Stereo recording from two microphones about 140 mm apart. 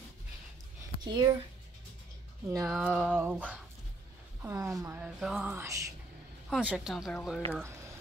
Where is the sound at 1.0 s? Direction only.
30° right (ahead or behind).